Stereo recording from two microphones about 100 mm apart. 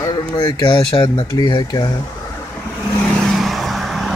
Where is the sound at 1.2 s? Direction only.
40° left (ahead or behind).